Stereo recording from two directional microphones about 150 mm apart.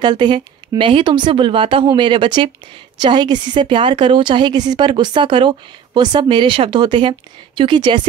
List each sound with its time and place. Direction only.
0.0 s a woman's voice: 30° right (ahead or behind)